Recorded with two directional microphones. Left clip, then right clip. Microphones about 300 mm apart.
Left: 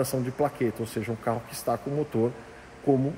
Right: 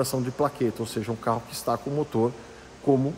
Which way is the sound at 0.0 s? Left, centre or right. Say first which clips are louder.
Right 1 dB; centre.